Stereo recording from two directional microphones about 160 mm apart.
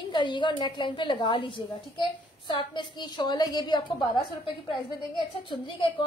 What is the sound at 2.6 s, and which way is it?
A woman's voice, 30° left (ahead or behind).